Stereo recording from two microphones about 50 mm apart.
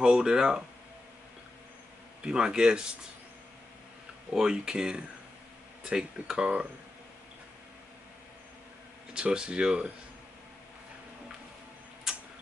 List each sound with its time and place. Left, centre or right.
0.0 s speech: centre
2.2 s speech: centre
4.3 s speech: centre
9.1 s speech: centre
12.1 s tick-tock: centre